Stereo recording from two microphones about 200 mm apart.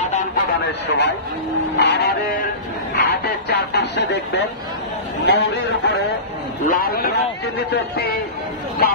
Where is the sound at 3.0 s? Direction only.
55° left (ahead or behind).